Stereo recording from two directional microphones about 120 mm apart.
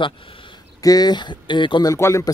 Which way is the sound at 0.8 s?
35° left (ahead or behind).